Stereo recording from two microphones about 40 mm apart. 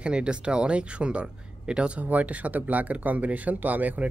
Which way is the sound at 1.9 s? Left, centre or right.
Right.